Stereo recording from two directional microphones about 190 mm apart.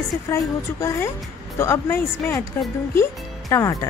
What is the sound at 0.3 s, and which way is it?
Speech, 15° left (ahead or behind).